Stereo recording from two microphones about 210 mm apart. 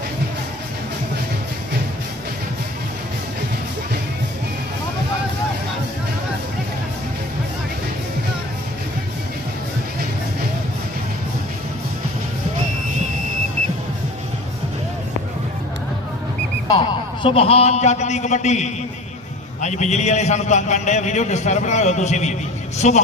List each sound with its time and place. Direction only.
16.7 s a man's voice: 25° left (ahead or behind)